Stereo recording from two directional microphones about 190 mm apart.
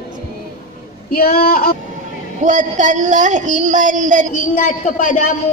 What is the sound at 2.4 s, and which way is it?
A woman's voice, 40° right (ahead or behind).